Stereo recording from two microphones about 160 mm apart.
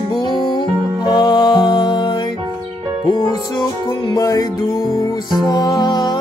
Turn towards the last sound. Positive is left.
turn(degrees=25)  # may be behind; listen again after turning